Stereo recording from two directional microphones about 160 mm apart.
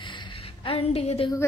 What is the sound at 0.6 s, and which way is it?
Speech, 35° left (ahead or behind).